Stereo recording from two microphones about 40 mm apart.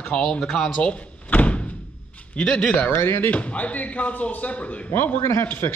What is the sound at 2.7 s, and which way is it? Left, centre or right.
Speech, left.